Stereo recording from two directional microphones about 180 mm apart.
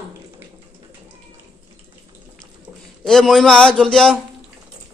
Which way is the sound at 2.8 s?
Centre (ahead or behind).